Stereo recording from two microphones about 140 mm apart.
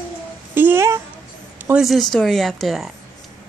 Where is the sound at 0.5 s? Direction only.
15° right (ahead or behind).